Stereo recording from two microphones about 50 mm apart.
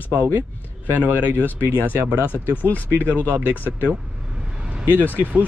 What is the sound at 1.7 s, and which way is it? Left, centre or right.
Speech, right.